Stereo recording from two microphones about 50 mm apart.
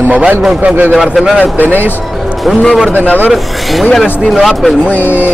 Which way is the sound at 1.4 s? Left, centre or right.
Left.